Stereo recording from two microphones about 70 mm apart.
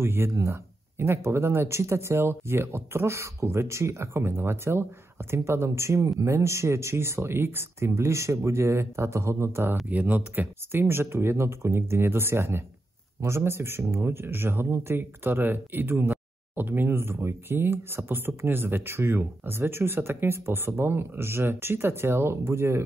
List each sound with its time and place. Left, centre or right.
0.0 s speech: right
9.8 s speech: right